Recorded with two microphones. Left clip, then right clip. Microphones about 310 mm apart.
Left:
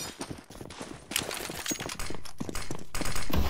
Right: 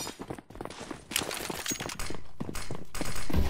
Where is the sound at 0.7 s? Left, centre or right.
Centre.